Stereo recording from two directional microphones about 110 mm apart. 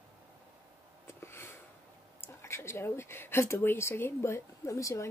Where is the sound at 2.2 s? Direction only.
25° left (ahead or behind).